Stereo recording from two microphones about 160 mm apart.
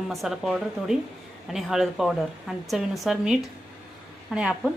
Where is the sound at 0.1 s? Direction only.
Centre (ahead or behind).